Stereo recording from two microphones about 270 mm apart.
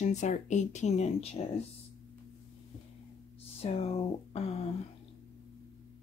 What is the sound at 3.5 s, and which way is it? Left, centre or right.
Speech, left.